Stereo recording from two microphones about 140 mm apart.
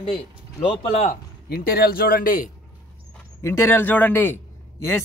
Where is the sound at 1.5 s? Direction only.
90° left.